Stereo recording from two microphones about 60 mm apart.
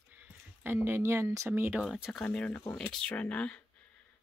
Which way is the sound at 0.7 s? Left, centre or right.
Right.